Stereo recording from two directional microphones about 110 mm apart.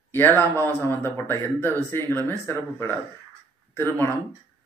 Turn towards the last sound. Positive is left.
turn(degrees=20)  # may be behind; listen again after turning